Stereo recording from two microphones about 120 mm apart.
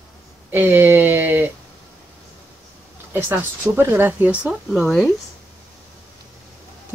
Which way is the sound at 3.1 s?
15° right (ahead or behind).